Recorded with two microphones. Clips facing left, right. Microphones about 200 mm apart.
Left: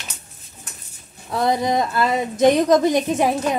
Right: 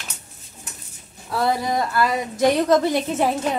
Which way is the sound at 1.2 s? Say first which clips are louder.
Left 2 dB; 20° left (ahead or behind).